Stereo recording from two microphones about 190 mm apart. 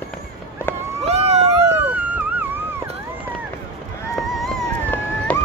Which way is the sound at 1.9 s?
10° right (ahead or behind).